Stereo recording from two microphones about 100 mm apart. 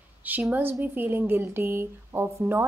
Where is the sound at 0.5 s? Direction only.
20° right (ahead or behind).